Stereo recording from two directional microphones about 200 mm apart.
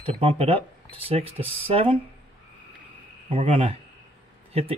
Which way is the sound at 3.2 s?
30° right (ahead or behind).